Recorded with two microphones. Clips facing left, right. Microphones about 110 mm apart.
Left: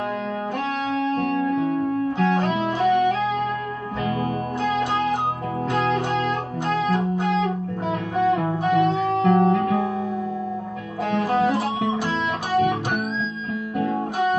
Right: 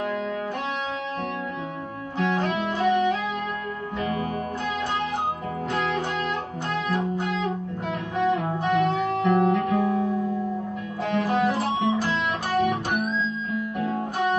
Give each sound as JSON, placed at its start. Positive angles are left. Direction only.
{"t": 1.4, "sound": "music", "side_deg": 50}
{"t": 5.7, "sound": "guitar", "side_deg": 45}
{"t": 6.7, "sound": "music", "side_deg": 45}
{"t": 8.6, "sound": "guitar", "side_deg": 45}
{"t": 11.1, "sound": "guitar", "side_deg": 45}
{"t": 12.5, "sound": "guitar", "side_deg": 45}